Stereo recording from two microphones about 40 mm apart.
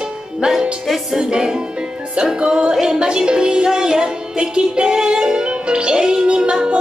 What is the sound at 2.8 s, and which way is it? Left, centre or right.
Music, centre.